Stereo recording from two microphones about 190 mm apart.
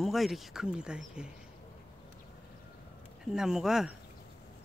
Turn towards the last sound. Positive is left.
turn(degrees=0)  # may be behind; listen again after turning